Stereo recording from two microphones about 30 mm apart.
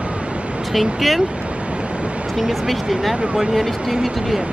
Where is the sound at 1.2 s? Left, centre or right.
Right.